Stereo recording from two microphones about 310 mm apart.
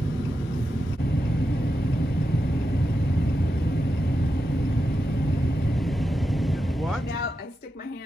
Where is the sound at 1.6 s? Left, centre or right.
Left.